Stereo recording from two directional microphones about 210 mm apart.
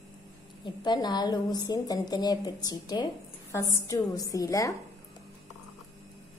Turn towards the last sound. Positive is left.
turn(degrees=15)  # may be behind; listen again after turning